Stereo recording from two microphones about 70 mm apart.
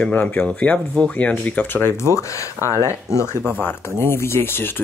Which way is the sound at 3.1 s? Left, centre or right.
Left.